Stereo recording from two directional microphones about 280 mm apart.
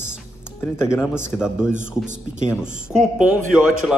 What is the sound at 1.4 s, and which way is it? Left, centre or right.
Speech, centre.